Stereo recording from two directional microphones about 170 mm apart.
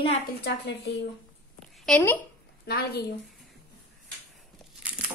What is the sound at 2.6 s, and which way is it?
Speech, 70° left (ahead or behind).